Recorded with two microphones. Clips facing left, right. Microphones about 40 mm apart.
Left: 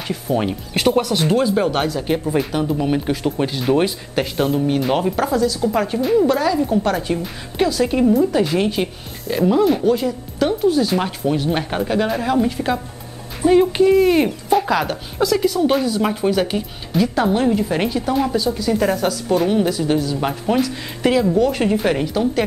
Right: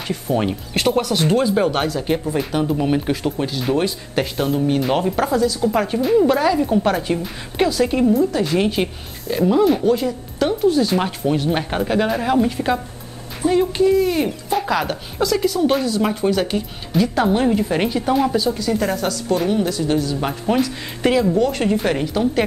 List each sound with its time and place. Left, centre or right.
0.1 s speech: centre
3.3 s speech: centre
4.1 s speech: centre
8.5 s speech: centre
13.4 s speech: centre